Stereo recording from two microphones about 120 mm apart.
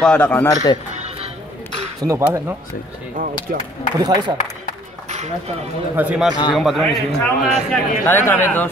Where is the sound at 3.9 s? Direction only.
35° right (ahead or behind).